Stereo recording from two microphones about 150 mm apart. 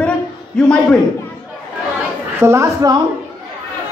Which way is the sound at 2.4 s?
20° right (ahead or behind).